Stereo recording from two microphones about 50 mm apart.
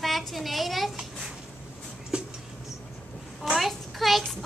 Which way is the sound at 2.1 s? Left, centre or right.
Centre.